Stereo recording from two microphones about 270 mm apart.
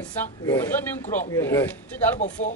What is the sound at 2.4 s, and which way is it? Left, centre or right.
Speech, left.